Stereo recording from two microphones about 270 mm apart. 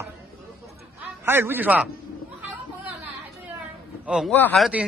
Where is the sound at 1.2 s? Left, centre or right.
Centre.